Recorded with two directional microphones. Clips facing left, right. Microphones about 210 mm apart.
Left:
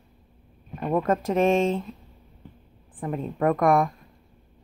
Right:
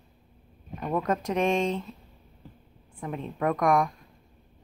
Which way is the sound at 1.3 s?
45° left (ahead or behind).